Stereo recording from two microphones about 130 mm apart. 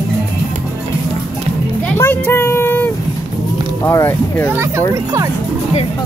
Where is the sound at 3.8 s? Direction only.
20° left (ahead or behind).